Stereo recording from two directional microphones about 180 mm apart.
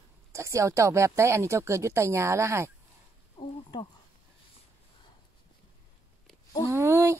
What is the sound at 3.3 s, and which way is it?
Speech, 30° left (ahead or behind).